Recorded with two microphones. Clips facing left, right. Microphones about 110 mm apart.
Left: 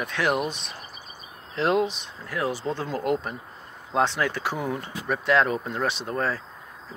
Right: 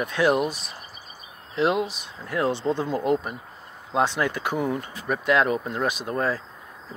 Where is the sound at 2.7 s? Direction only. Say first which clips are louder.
Right 3 dB; 15° right (ahead or behind).